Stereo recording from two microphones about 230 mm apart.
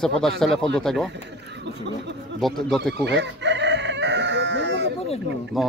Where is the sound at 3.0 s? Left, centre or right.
Right.